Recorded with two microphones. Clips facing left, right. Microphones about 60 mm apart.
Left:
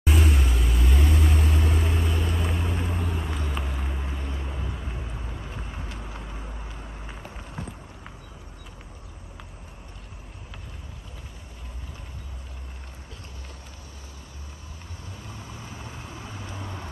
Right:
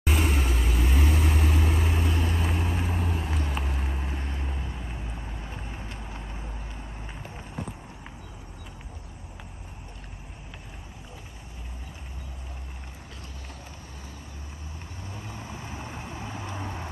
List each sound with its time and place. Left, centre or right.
0.0 s vehicle: centre
15.5 s vehicle: centre